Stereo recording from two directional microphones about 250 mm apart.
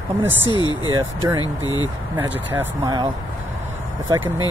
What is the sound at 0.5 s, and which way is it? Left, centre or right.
Speech, centre.